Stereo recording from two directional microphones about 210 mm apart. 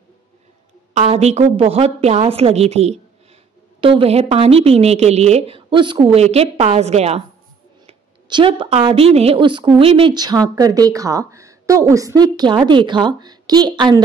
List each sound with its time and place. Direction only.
0.9 s a woman's voice: 30° right (ahead or behind)